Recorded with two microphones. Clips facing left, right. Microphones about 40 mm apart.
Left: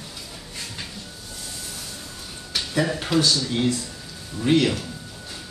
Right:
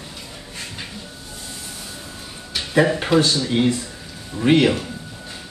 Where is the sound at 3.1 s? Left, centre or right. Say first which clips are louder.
Right 4 dB; right.